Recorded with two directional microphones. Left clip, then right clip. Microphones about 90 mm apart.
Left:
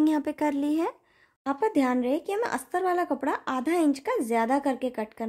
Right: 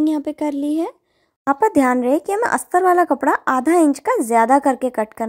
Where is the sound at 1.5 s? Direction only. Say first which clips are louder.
Right 9 dB; 50° right (ahead or behind).